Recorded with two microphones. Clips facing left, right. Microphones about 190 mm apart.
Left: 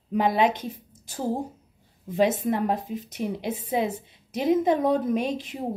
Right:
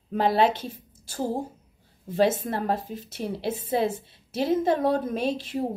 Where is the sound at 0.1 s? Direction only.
15° left (ahead or behind).